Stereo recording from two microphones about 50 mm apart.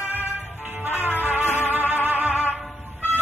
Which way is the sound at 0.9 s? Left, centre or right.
Left.